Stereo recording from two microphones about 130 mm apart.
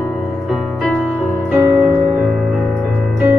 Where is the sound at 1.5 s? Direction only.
20° right (ahead or behind).